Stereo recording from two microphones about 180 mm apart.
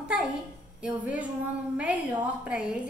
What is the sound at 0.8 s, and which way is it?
Speech, 5° right (ahead or behind).